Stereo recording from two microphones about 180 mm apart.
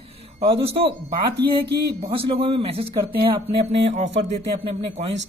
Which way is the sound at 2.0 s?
30° right (ahead or behind).